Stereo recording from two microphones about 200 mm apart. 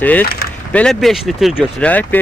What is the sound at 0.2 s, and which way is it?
Speech, 50° left (ahead or behind).